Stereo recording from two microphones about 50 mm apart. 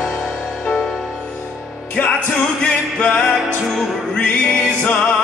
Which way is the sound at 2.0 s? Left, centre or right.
Left.